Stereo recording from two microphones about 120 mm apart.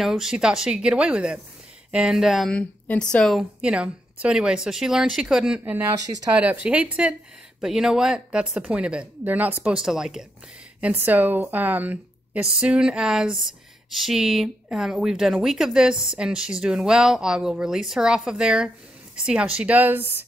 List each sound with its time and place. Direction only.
0.0 s speech: 5° right (ahead or behind)
2.5 s a woman's voice: 10° left (ahead or behind)
3.6 s speech: 10° right (ahead or behind)
5.6 s speech: 20° right (ahead or behind)
6.4 s a woman's voice: 10° right (ahead or behind)
10.8 s a woman's voice: 15° right (ahead or behind)